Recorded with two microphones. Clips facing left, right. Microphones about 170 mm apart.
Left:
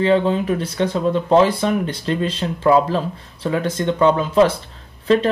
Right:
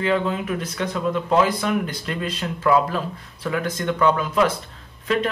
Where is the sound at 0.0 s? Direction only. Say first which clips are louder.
Left 6 dB; 30° left (ahead or behind).